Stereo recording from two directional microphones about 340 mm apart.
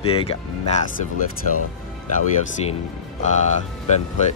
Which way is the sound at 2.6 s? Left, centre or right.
Centre.